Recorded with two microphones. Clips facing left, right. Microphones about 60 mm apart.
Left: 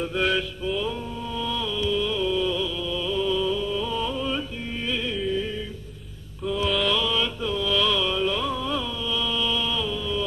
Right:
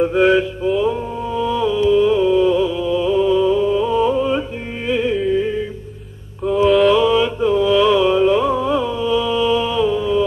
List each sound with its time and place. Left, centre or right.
0.0 s mantra: right
4.8 s music: right
6.9 s music: right